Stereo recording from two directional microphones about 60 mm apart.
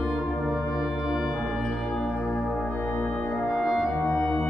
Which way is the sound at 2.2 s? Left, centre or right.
Left.